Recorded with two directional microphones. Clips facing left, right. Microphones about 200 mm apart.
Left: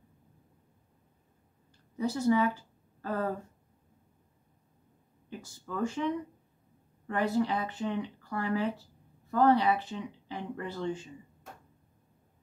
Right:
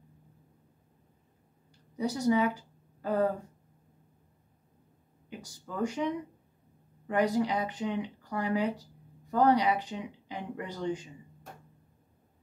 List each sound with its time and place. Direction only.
2.0 s a woman's voice: 15° right (ahead or behind)
5.4 s speech: 15° right (ahead or behind)